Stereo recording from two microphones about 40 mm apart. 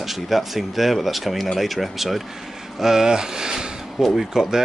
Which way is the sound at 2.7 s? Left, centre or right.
Centre.